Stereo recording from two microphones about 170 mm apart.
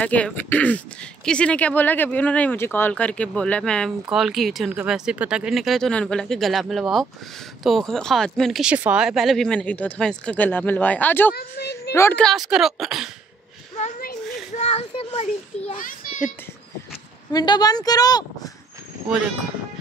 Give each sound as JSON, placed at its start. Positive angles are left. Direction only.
{"t": 0.0, "sound": "speech", "side_deg": 10}
{"t": 11.3, "sound": "speech", "side_deg": 70}
{"t": 11.9, "sound": "speech", "side_deg": 15}
{"t": 12.3, "sound": "speech", "side_deg": 0}
{"t": 13.7, "sound": "a sound", "side_deg": 50}
{"t": 14.6, "sound": "a child's voice", "side_deg": 35}
{"t": 15.8, "sound": "a sound", "side_deg": 55}
{"t": 17.3, "sound": "a woman's voice", "side_deg": 25}